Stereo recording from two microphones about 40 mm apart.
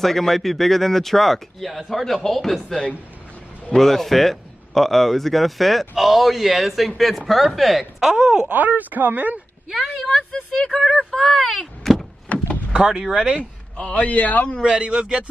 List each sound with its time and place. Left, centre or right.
0.0 s speech: centre
8.0 s speech: centre
8.5 s speech: right
9.7 s speech: centre
12.3 s door: left
12.7 s speech: right
13.8 s speech: left
14.6 s speech: right